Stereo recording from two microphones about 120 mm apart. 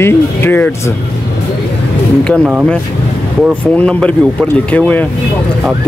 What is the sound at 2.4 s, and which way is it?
Speech, 10° right (ahead or behind).